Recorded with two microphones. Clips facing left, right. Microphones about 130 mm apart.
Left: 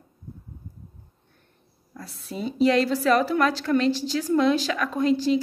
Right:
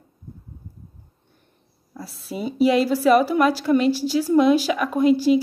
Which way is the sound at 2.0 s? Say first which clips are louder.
Right 3 dB; 5° right (ahead or behind).